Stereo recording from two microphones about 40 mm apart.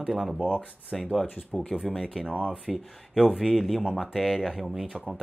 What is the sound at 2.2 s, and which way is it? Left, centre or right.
Speech, right.